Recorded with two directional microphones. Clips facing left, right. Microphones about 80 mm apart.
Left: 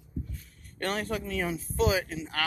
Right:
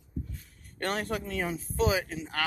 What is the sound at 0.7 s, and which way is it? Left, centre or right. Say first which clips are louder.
Speech: even; right.